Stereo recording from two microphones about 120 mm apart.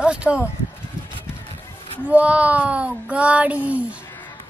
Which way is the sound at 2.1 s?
10° right (ahead or behind).